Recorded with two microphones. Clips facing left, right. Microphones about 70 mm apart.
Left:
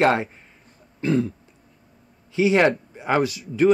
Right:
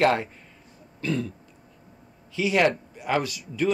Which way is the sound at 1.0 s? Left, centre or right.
Left.